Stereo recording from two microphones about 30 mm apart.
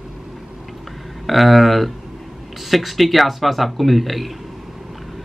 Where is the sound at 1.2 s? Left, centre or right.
Centre.